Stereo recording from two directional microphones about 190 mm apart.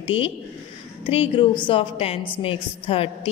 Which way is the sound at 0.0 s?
30° left (ahead or behind).